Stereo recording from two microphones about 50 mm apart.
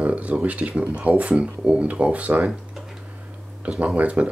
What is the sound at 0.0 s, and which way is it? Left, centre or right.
Speech, right.